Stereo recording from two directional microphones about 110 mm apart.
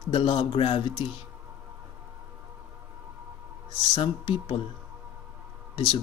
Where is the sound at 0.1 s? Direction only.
45° left (ahead or behind).